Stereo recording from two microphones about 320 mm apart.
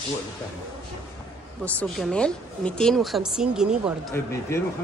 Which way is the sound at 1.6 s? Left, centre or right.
Centre.